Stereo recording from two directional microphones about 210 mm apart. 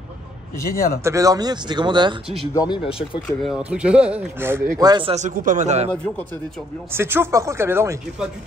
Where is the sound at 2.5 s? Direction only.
20° left (ahead or behind).